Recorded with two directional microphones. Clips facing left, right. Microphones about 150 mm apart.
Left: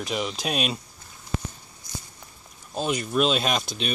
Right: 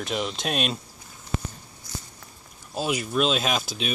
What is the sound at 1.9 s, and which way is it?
Walk, 15° left (ahead or behind).